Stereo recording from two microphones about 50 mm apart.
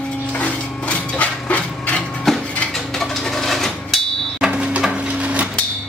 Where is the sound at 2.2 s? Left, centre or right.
Centre.